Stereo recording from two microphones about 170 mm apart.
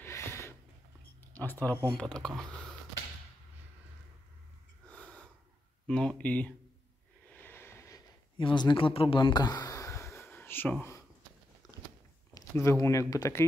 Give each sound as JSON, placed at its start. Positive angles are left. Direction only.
{"t": 0.0, "sound": "a sound", "side_deg": 15}
{"t": 1.2, "sound": "speech", "side_deg": 10}
{"t": 4.8, "sound": "snort", "side_deg": 5}
{"t": 5.9, "sound": "speech", "side_deg": 5}
{"t": 7.2, "sound": "a sound", "side_deg": 10}
{"t": 8.4, "sound": "speech", "side_deg": 30}
{"t": 12.4, "sound": "speech", "side_deg": 15}